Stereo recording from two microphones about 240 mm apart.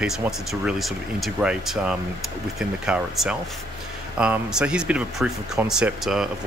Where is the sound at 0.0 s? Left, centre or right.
Centre.